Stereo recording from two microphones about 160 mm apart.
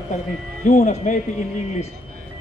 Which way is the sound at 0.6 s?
50° left (ahead or behind).